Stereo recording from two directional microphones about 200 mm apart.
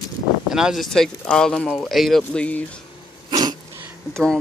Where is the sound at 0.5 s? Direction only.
5° right (ahead or behind).